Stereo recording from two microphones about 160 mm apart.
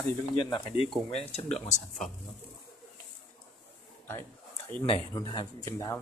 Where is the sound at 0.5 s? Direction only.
35° left (ahead or behind).